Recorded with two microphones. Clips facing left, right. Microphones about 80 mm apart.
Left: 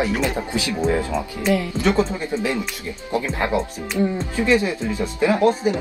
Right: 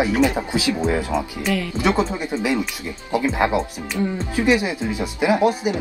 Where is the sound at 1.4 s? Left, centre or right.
Left.